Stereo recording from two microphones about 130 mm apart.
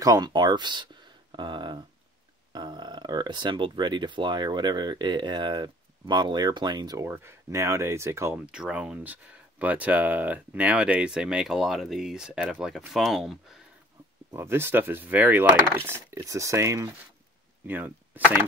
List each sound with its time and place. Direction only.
0.0 s speech: 30° right (ahead or behind)
7.0 s speech: 20° right (ahead or behind)
8.4 s speech: 5° right (ahead or behind)
14.3 s speech: 20° right (ahead or behind)